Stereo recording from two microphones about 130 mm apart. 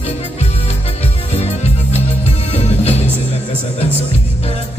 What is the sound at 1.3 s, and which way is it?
Music, 55° left (ahead or behind).